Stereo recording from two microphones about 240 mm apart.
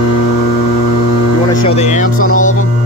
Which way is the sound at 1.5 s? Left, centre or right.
Left.